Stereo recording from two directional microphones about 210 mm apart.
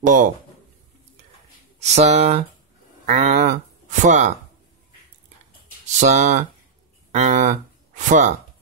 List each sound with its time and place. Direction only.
0.0 s speech: 35° right (ahead or behind)
1.8 s speech: 30° right (ahead or behind)
5.9 s speech: 35° right (ahead or behind)